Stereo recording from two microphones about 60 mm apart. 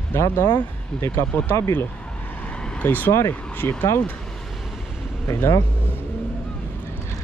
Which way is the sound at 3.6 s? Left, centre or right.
Left.